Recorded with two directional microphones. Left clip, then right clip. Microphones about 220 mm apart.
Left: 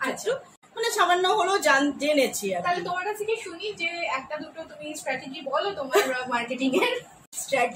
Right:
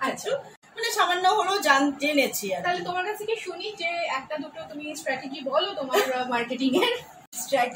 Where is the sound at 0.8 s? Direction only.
Centre (ahead or behind).